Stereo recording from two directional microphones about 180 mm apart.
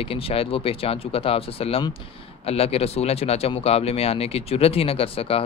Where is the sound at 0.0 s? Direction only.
30° left (ahead or behind).